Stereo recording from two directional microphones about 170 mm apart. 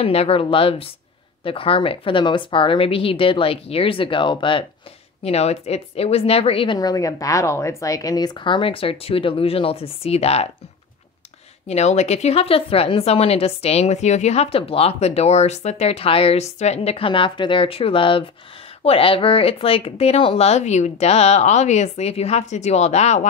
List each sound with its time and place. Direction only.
0.0 s speech: 35° left (ahead or behind)
11.6 s speech: 40° left (ahead or behind)